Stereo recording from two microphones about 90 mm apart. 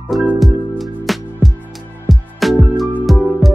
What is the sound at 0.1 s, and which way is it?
Music, centre (ahead or behind).